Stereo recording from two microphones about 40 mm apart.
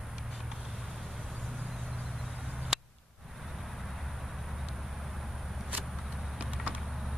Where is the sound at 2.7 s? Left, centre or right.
Centre.